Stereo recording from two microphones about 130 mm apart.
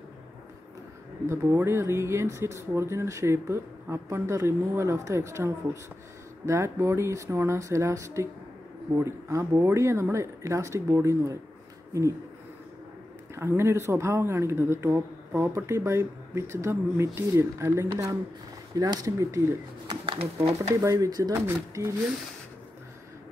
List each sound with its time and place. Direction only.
1.2 s speech: 20° right (ahead or behind)
13.3 s speech: 20° right (ahead or behind)
19.9 s speech: 45° right (ahead or behind)
20.8 s speech: 25° right (ahead or behind)